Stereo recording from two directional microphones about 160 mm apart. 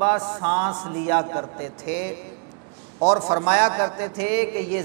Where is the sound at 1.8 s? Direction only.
10° right (ahead or behind).